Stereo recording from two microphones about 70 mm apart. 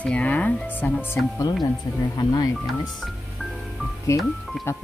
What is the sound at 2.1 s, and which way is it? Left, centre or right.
Speech, left.